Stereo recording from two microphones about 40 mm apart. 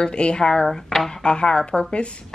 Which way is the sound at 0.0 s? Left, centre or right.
Left.